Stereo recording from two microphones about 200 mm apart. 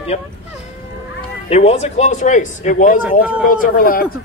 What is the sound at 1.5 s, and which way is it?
A man's voice, 30° left (ahead or behind).